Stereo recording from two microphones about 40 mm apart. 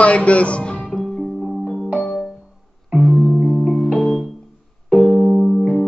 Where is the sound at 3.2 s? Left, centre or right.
Centre.